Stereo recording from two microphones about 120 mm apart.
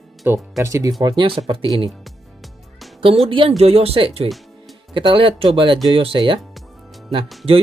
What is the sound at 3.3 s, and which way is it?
Speech, 50° right (ahead or behind).